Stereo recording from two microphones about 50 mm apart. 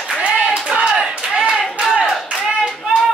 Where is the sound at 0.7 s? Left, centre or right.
Centre.